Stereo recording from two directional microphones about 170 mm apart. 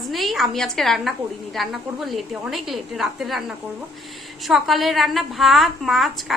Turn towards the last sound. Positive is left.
turn(degrees=0)  # may be behind; listen again after turning